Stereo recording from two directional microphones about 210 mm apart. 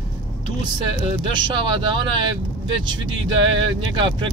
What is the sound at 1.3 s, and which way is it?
Speech, 20° right (ahead or behind).